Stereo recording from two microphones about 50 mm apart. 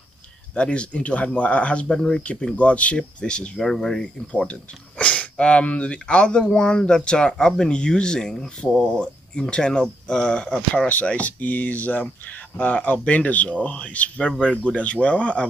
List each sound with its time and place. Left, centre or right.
0.6 s speech: left
2.0 s speech: centre
2.5 s speech: left; by 4.0 s centre
4.0 s speech: left
10.9 s speech: left